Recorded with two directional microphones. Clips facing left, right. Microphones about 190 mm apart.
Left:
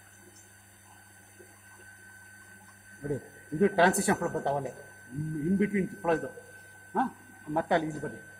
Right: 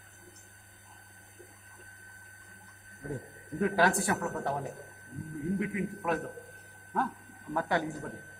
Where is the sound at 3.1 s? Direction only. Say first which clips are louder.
Left 5 dB; 25° left (ahead or behind).